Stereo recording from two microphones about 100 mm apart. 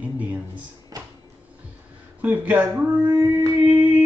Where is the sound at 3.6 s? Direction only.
15° right (ahead or behind).